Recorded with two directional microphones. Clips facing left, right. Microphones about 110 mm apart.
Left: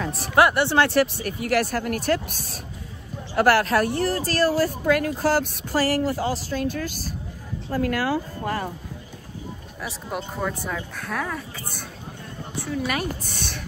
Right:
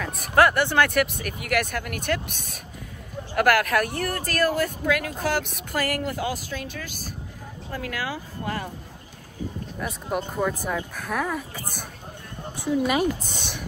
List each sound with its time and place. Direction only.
0.0 s speech: 30° left (ahead or behind)
0.4 s speech: 20° left (ahead or behind); by 8.6 s 45° left (ahead or behind)
9.8 s speech: centre (ahead or behind)
12.5 s a woman's voice: 15° right (ahead or behind)